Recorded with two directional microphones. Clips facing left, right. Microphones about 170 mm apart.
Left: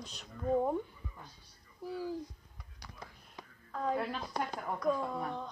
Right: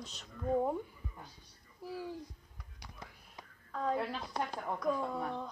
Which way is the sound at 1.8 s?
Centre (ahead or behind).